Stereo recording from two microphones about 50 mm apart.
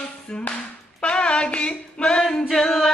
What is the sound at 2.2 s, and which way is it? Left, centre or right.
Male singing, centre.